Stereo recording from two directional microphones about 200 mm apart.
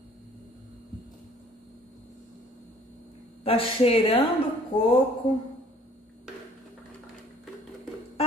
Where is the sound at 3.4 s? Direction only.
30° left (ahead or behind).